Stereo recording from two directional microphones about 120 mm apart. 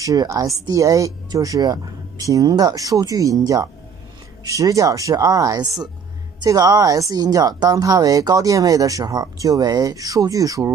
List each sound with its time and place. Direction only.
0.0 s a woman's voice: 30° right (ahead or behind)